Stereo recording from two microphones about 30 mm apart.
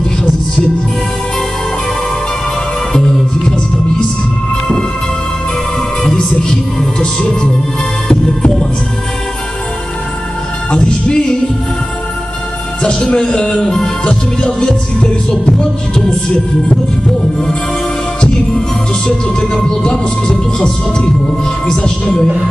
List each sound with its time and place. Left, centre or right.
2.9 s music: left
6.0 s music: left
7.0 s speech: left
10.7 s music: left
12.8 s music: left
14.4 s speech: left
15.9 s music: left
19.0 s speech: left